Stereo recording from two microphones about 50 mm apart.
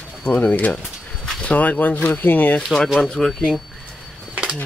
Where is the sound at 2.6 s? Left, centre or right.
Centre.